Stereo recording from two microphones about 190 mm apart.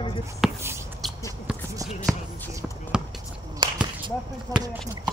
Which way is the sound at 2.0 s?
5° left (ahead or behind).